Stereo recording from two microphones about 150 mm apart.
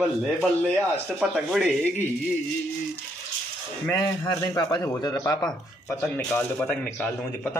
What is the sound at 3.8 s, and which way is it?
Speech, 25° left (ahead or behind).